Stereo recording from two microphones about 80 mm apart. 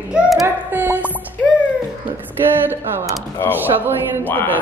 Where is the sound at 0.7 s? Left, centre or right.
Right.